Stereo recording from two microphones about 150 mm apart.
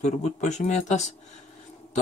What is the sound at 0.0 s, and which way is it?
Speech, 50° left (ahead or behind).